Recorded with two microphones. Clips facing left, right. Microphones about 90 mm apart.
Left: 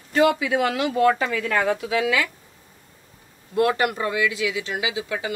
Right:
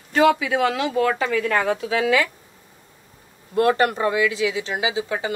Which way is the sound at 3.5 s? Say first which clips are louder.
Right 2 dB; 35° right (ahead or behind).